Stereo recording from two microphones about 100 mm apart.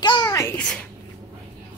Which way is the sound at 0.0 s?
50° left (ahead or behind).